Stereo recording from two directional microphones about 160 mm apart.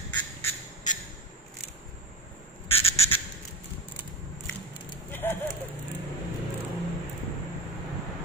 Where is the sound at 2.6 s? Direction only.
35° left (ahead or behind).